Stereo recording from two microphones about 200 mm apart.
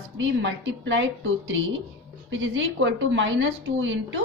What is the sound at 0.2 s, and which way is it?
Speech, 65° right (ahead or behind).